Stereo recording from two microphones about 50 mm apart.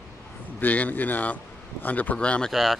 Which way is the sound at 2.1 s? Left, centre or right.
Left.